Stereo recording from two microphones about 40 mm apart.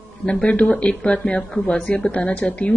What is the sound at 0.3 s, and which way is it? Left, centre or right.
A woman's voice, left.